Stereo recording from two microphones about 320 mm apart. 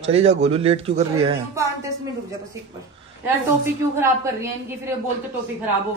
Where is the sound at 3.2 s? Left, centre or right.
Centre.